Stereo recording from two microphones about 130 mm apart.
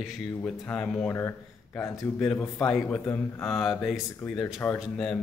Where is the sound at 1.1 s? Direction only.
20° left (ahead or behind); by 4.4 s 5° left (ahead or behind).